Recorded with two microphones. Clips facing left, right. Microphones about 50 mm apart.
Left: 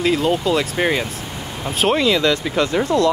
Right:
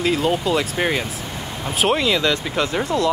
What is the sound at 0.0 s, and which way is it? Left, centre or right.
Speech, centre.